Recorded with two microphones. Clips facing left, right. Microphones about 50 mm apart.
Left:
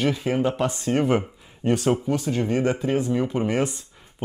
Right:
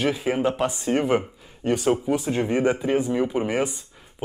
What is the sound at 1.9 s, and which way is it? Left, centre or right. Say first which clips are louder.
Speech: right 1 dB; centre.